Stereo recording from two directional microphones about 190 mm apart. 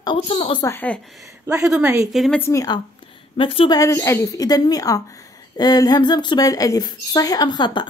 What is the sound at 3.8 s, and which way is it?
A woman's voice, 15° left (ahead or behind).